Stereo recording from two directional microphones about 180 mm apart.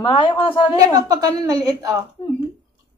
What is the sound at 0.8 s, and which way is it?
A woman's voice, 20° right (ahead or behind).